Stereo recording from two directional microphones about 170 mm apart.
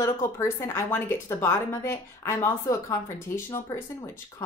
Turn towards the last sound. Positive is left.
turn(degrees=15)  # may be behind; listen again after turning